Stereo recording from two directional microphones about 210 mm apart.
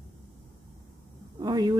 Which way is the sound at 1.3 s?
20° right (ahead or behind).